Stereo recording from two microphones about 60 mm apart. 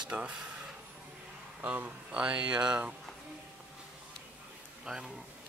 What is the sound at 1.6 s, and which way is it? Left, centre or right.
Speech, right.